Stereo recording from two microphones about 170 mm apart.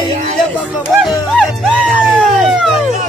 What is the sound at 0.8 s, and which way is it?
Music, centre (ahead or behind).